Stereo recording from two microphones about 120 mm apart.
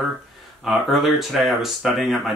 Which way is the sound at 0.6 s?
Centre (ahead or behind).